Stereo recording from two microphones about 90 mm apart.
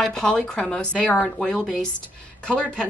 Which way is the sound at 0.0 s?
5° left (ahead or behind).